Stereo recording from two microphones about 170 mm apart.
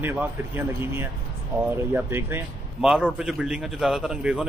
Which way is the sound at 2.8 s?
5° right (ahead or behind).